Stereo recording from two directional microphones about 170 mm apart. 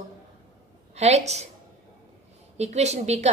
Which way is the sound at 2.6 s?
40° right (ahead or behind).